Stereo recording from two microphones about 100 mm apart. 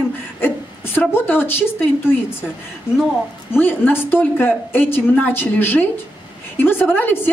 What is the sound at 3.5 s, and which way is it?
A woman's voice, 20° left (ahead or behind).